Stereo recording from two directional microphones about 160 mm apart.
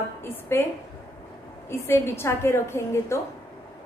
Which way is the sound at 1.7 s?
15° left (ahead or behind).